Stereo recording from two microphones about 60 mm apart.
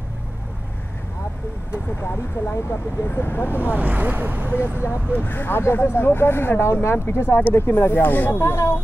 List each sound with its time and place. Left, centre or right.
2.4 s speech: left
3.5 s speech: right
4.8 s speech: left
8.4 s speech: left